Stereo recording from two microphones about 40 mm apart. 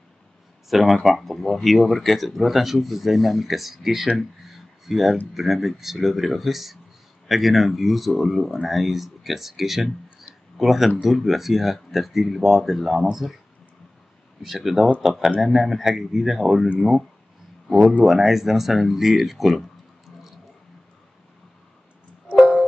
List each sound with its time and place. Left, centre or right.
0.7 s speech: centre
4.5 s a sound: centre
5.3 s speech: centre
14.4 s speech: centre
17.7 s speech: right
18.0 s speech: centre